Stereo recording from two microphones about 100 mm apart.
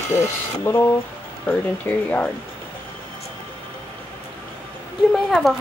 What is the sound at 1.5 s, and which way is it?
Speech, 15° left (ahead or behind).